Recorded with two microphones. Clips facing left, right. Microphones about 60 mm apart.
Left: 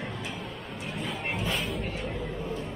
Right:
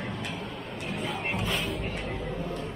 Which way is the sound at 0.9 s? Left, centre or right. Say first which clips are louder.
Right 1 dB; centre.